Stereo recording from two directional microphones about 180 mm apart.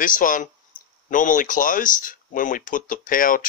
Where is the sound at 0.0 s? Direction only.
50° left (ahead or behind).